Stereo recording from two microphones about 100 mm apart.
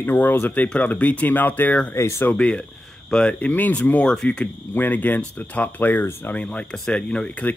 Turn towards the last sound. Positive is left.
turn(degrees=15)  # may be behind; listen again after turning